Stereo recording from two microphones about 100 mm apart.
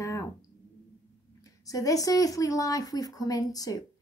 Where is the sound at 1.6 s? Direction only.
35° left (ahead or behind).